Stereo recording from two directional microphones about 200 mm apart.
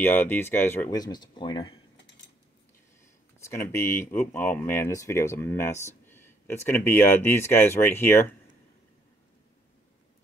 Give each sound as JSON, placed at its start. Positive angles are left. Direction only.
{"t": 0.0, "sound": "speech", "side_deg": 10}
{"t": 3.3, "sound": "speech", "side_deg": 15}